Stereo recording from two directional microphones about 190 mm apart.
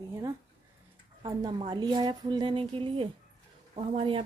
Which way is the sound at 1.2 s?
25° right (ahead or behind).